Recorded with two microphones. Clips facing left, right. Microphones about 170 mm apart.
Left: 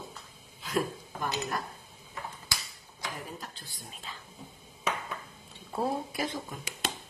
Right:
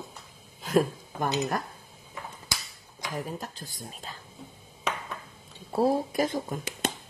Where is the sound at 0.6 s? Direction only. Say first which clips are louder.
Right 7 dB; 45° right (ahead or behind).